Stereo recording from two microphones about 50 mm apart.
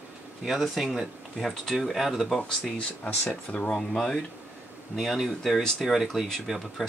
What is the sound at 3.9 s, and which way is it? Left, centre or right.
Speech, centre.